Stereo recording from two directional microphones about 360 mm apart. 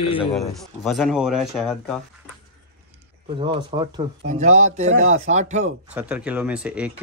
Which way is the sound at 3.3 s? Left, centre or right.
Centre.